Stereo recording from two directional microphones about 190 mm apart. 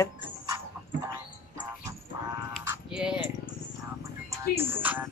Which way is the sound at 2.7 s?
5° right (ahead or behind).